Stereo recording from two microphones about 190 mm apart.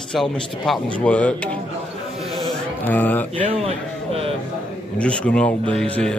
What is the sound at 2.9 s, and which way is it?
Speech, 10° left (ahead or behind).